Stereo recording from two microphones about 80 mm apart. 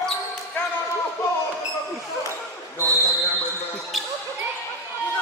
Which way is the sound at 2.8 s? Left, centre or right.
Left.